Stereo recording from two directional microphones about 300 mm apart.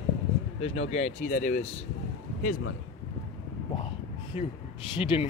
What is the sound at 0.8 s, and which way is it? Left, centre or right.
Speech, left.